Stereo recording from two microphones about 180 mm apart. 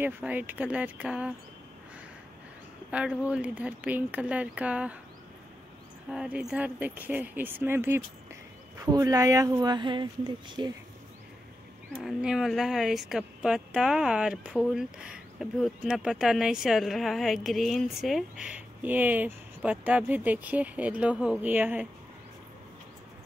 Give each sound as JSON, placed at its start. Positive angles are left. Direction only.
{"t": 0.0, "sound": "speech", "side_deg": -10}
{"t": 2.9, "sound": "speech", "side_deg": -5}
{"t": 6.0, "sound": "speech", "side_deg": -5}
{"t": 12.0, "sound": "a woman's voice", "side_deg": -5}